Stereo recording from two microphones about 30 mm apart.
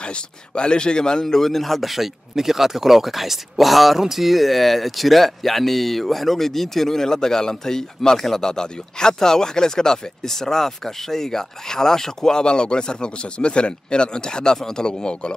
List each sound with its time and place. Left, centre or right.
0.0 s speech: left
1.2 s speech: centre; by 15.3 s left